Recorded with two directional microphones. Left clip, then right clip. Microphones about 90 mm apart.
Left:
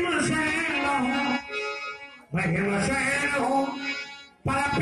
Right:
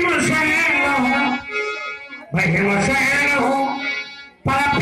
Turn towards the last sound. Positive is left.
turn(degrees=30)  # may be behind; listen again after turning